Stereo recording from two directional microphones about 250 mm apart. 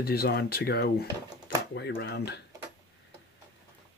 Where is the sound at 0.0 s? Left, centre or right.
Left.